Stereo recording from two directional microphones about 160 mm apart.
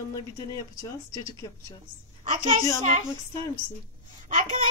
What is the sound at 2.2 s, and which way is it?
Speech, 45° right (ahead or behind).